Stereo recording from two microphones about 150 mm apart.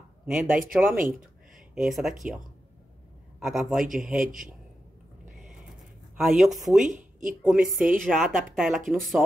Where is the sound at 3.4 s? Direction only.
Centre (ahead or behind).